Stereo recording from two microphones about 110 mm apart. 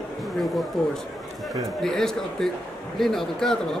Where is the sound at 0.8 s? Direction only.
5° left (ahead or behind).